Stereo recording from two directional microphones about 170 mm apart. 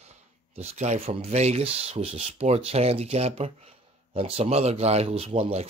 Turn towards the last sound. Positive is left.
turn(degrees=-40)  # may be behind; listen again after turning